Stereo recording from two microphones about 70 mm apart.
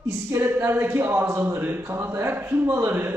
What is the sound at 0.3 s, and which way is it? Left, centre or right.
Speech, right.